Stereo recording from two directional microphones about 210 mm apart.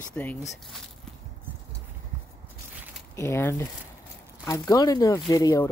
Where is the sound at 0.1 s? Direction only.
10° left (ahead or behind).